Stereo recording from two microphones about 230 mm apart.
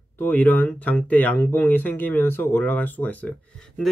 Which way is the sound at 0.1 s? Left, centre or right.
Centre.